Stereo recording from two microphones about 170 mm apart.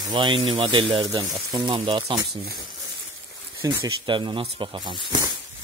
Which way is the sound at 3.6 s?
25° right (ahead or behind).